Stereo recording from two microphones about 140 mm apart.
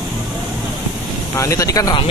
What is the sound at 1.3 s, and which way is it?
Speech, 25° left (ahead or behind).